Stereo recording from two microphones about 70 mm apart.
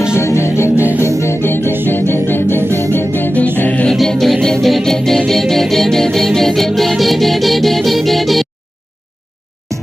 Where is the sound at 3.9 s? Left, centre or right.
Centre.